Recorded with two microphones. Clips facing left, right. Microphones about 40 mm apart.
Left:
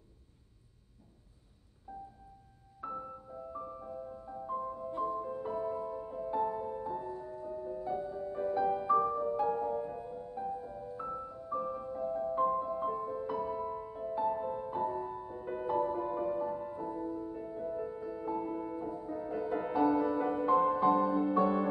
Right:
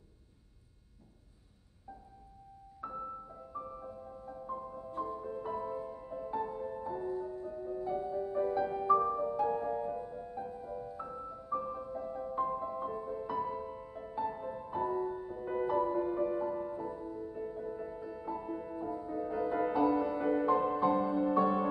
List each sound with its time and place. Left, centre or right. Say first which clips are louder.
1.9 s music: left 4 dB; centre
9.6 s music: left 1 dB; centre
10.3 s music: left 4 dB; centre